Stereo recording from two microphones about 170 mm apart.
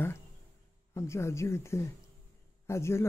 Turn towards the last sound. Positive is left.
turn(degrees=15)  # may be behind; listen again after turning